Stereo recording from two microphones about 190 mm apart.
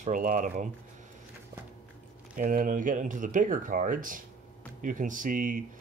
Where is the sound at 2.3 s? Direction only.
45° right (ahead or behind).